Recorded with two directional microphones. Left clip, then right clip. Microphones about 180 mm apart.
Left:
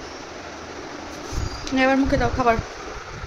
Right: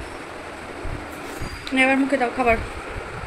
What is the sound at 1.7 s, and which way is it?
Speech, 15° left (ahead or behind).